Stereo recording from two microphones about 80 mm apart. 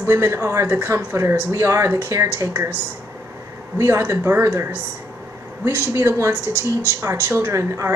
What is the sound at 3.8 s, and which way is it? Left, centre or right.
Speech, right.